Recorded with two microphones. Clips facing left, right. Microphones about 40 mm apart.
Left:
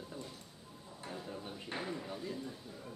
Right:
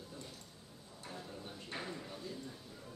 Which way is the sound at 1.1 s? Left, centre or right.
Centre.